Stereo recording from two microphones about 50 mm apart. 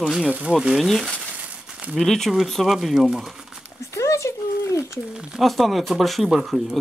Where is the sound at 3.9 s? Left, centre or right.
Left.